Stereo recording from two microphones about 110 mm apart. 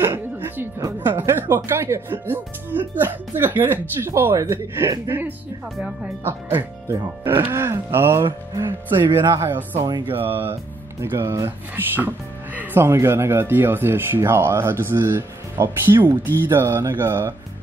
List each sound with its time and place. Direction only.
0.0 s speech: 20° right (ahead or behind)
6.9 s speech: 20° right (ahead or behind)
8.5 s speech: 45° right (ahead or behind)
9.3 s speech: 20° right (ahead or behind)